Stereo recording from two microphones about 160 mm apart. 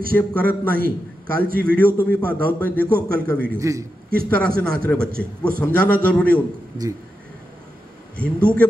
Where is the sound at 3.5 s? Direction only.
20° right (ahead or behind).